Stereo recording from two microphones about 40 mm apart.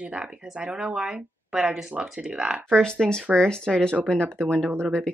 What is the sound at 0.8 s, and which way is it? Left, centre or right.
A woman's voice, right.